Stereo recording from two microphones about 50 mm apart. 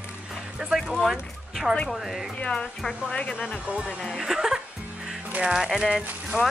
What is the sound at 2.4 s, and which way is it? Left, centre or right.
Speech, left.